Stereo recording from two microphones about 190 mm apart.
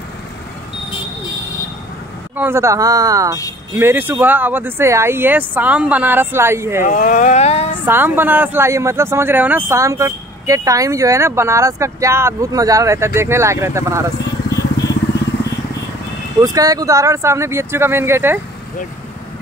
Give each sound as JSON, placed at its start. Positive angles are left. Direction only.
{"t": 2.3, "sound": "speech", "side_deg": -10}
{"t": 6.8, "sound": "speech", "side_deg": 45}
{"t": 7.8, "sound": "speech", "side_deg": -10}
{"t": 16.3, "sound": "speech", "side_deg": -20}